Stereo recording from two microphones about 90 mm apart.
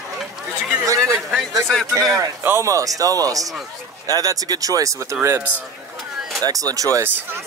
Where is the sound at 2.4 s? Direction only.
35° right (ahead or behind).